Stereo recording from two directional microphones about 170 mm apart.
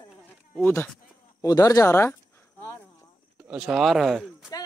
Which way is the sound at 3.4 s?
5° right (ahead or behind).